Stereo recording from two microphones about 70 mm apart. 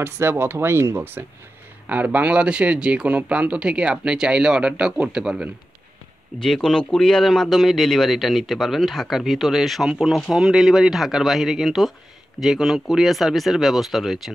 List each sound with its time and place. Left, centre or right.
0.0 s speech: right
1.9 s speech: right
6.4 s a man's voice: centre